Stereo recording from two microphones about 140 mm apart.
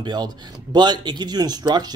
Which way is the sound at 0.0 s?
30° right (ahead or behind).